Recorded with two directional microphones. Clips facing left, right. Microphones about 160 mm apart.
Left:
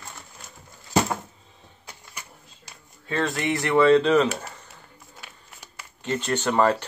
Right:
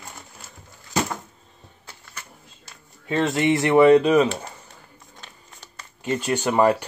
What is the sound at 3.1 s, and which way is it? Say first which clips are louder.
Speech: right 5 dB; 20° right (ahead or behind).